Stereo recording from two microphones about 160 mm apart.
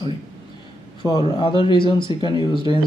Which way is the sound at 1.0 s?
25° left (ahead or behind).